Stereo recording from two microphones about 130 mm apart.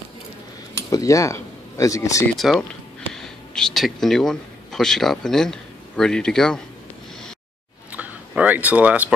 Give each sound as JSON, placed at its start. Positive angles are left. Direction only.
{"t": 0.8, "sound": "speech", "side_deg": 25}
{"t": 2.2, "sound": "a man's voice", "side_deg": 0}
{"t": 7.9, "sound": "speech", "side_deg": -10}